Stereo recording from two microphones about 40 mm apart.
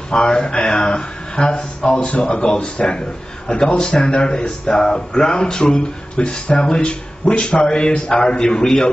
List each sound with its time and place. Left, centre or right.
0.1 s speech: left